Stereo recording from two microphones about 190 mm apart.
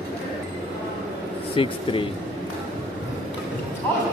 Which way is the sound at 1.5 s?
25° left (ahead or behind).